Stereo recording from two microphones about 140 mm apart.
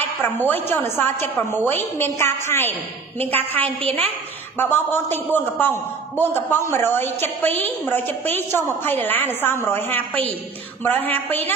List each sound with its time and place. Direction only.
0.2 s a woman's voice: 15° left (ahead or behind)